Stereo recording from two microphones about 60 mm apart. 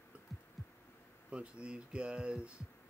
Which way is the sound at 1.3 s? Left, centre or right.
Centre.